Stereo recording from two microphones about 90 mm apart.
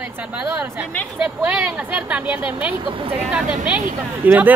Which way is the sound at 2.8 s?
75° right (ahead or behind).